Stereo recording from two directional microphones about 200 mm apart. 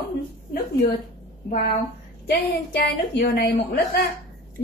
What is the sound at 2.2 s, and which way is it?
A woman's voice, 55° left (ahead or behind).